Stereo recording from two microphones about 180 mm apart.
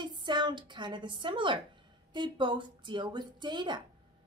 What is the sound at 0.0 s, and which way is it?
A woman's voice, 25° right (ahead or behind).